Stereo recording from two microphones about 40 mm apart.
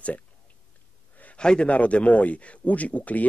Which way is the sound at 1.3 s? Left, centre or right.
Left.